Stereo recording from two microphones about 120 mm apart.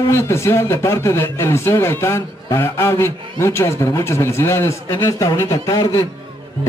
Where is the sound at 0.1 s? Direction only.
20° left (ahead or behind).